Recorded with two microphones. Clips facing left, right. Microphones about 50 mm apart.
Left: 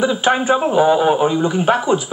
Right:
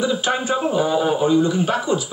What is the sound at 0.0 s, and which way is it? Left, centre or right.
A man's voice, left.